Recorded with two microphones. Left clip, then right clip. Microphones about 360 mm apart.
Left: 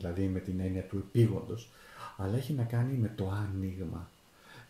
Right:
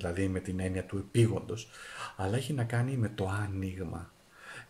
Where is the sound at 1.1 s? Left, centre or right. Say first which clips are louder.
Right 1 dB; right.